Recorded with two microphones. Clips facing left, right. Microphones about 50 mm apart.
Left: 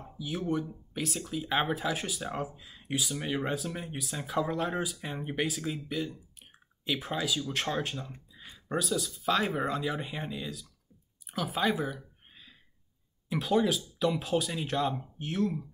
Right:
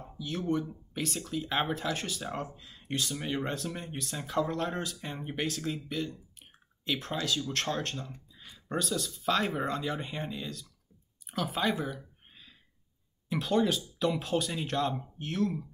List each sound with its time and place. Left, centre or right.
0.0 s speech: centre
11.2 s a sound: centre
13.3 s speech: centre